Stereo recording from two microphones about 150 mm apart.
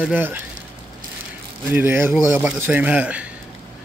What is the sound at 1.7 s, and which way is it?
Speech, 15° right (ahead or behind).